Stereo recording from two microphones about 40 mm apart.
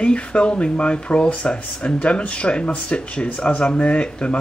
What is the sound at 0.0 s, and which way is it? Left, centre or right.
Speech, left.